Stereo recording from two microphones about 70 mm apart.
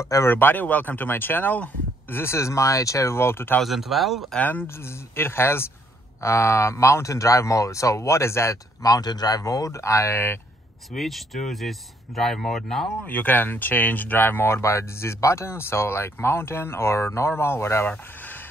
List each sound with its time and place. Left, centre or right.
0.0 s speech: left
0.3 s speech: left
3.6 s speech: centre
4.4 s speech: left
4.6 s speech: left
8.8 s speech: left
10.9 s speech: centre
13.0 s speech: left
17.8 s a sound: left